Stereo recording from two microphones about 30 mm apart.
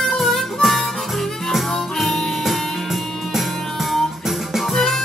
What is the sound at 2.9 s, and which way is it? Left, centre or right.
Music, centre.